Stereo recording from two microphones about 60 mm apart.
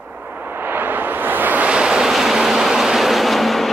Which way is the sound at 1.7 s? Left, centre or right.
Centre.